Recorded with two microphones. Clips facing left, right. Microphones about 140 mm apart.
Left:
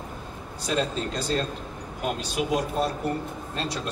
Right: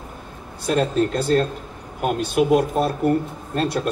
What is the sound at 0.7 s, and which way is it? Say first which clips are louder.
A man's voice: right 8 dB; 55° right (ahead or behind).